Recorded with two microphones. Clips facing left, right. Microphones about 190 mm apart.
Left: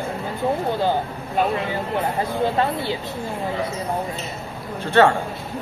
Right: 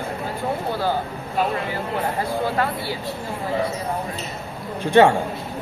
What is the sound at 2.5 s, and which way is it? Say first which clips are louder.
Speech: left 2 dB; 20° left (ahead or behind).